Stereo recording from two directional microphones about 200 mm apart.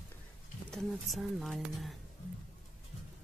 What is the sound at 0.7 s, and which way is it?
Speech, centre (ahead or behind).